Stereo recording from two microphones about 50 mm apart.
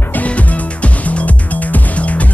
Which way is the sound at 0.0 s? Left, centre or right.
Left.